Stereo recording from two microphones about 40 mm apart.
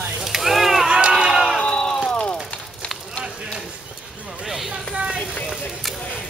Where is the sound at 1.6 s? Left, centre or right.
Left.